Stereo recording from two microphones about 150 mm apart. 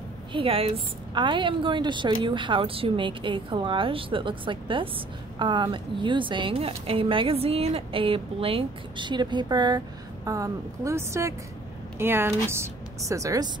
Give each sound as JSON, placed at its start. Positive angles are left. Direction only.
{"t": 0.3, "sound": "a woman's voice", "side_deg": -40}